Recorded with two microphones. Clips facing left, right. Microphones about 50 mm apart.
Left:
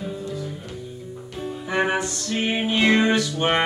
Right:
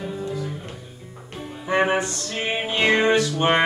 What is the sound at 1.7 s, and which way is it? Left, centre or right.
Music, right.